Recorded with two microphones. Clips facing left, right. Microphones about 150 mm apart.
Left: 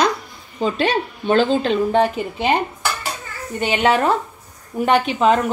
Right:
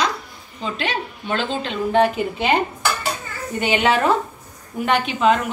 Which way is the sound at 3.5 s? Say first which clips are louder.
Left 1 dB; 35° left (ahead or behind).